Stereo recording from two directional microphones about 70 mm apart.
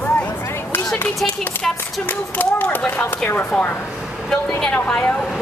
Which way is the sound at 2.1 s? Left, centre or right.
Left.